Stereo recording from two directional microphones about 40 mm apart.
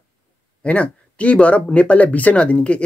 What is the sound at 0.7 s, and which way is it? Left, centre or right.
Speech, left.